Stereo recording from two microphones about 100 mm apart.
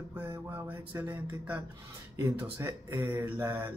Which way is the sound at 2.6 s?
30° right (ahead or behind).